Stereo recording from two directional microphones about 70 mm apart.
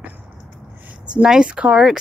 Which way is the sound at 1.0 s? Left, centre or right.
Centre.